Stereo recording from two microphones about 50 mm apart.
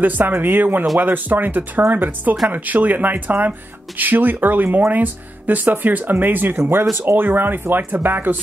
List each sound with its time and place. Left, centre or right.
0.0 s speech: right